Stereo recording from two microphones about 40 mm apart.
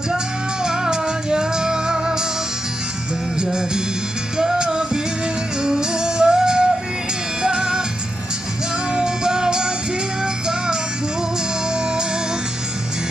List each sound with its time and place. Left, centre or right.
0.7 s music: centre
4.4 s music: centre
8.9 s music: centre